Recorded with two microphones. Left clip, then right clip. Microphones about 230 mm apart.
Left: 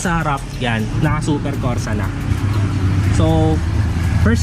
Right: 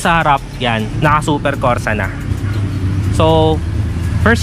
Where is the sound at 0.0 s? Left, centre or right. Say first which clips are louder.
Right 8 dB; centre.